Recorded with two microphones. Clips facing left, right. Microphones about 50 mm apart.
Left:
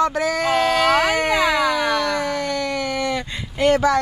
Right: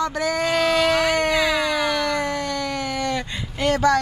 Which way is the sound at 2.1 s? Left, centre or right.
Centre.